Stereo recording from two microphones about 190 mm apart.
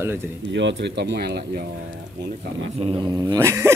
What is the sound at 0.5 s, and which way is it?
Speech, 70° right (ahead or behind).